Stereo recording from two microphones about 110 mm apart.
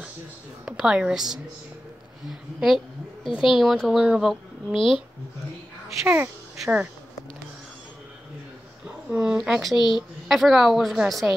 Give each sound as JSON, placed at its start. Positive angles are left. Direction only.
{"t": 0.7, "sound": "a woman's voice", "side_deg": -5}
{"t": 4.7, "sound": "speech", "side_deg": 50}
{"t": 6.0, "sound": "speech", "side_deg": -20}
{"t": 6.6, "sound": "speech", "side_deg": -5}
{"t": 9.1, "sound": "a woman's voice", "side_deg": -10}
{"t": 9.8, "sound": "speech", "side_deg": 45}
{"t": 10.2, "sound": "a woman's voice", "side_deg": 0}